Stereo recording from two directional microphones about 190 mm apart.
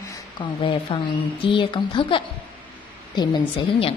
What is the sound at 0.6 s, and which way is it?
A woman's voice, 25° left (ahead or behind).